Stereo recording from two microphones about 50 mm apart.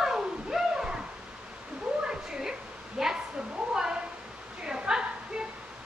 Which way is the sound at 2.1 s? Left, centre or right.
Centre.